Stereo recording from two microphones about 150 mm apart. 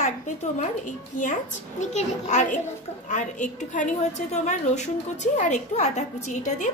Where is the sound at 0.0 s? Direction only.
50° left (ahead or behind).